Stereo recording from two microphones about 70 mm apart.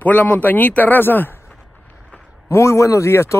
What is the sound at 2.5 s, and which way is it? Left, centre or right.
Speech, left.